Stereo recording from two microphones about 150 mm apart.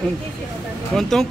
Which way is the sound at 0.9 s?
5° left (ahead or behind).